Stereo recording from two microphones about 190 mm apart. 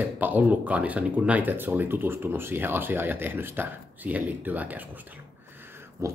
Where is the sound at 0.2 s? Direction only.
10° right (ahead or behind).